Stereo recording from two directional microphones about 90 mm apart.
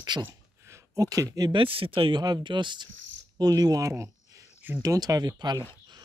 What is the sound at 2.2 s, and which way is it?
Speech, 55° right (ahead or behind).